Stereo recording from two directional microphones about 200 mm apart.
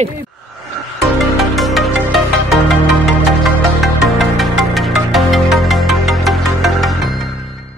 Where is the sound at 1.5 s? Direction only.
Centre (ahead or behind).